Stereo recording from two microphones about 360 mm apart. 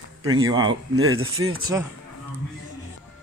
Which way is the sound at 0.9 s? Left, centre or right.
Right.